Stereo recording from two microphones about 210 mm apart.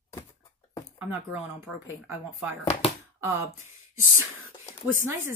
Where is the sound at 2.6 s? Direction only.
25° left (ahead or behind).